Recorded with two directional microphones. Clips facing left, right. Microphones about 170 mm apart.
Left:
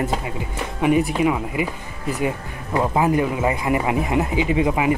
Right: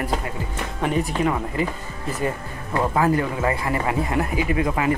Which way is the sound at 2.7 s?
15° left (ahead or behind).